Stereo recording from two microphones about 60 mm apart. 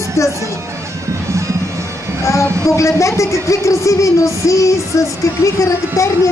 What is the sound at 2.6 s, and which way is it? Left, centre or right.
Speech, left.